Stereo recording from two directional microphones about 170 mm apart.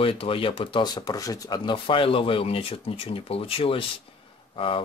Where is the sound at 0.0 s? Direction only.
35° left (ahead or behind).